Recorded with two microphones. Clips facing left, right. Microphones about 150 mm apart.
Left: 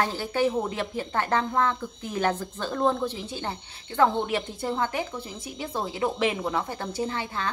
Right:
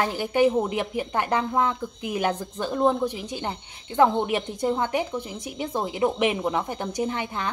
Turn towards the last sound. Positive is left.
turn(degrees=-20)  # may be behind; listen again after turning